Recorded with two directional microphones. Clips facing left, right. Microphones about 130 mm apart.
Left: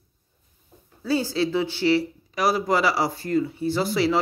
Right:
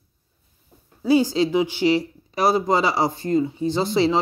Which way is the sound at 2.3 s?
25° right (ahead or behind).